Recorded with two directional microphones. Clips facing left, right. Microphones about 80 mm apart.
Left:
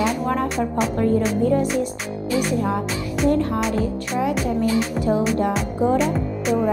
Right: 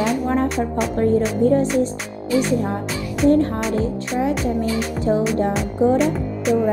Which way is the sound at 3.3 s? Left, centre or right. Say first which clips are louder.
Right 2 dB; right.